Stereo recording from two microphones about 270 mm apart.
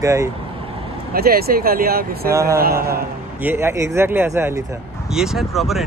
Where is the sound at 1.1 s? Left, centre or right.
Right.